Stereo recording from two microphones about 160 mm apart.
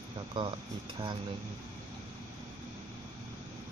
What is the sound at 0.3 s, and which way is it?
Speech, 30° right (ahead or behind).